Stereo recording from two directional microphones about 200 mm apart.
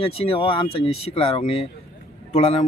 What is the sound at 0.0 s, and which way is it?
Speech, 25° left (ahead or behind).